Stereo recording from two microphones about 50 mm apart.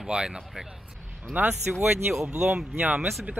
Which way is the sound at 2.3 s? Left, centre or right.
Right.